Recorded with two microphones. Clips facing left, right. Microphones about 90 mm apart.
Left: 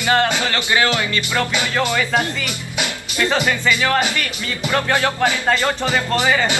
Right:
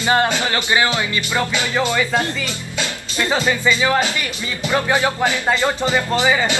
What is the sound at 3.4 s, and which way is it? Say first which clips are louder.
Speech: right 1 dB; 20° right (ahead or behind).